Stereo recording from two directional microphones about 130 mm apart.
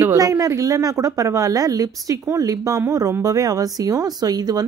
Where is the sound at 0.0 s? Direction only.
25° right (ahead or behind).